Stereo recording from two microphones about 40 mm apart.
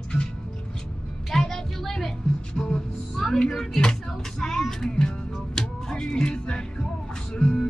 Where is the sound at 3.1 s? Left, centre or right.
Centre.